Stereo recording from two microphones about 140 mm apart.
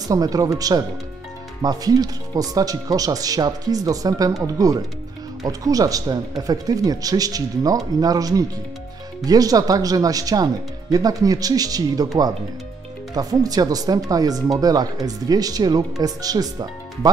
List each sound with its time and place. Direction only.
0.1 s speech: 25° right (ahead or behind)
13.1 s speech: 25° right (ahead or behind)